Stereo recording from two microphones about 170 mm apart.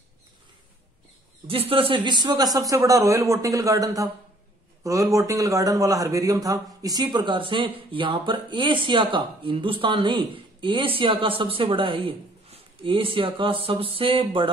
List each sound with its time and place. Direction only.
1.5 s a man's voice: 35° right (ahead or behind)